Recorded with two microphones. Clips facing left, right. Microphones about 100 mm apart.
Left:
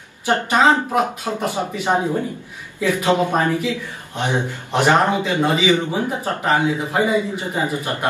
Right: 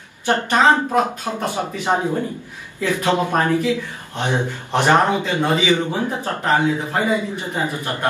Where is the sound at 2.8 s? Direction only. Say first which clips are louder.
Left 1 dB; 15° left (ahead or behind).